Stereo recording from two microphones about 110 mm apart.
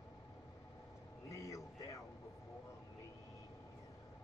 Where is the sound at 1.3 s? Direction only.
30° left (ahead or behind).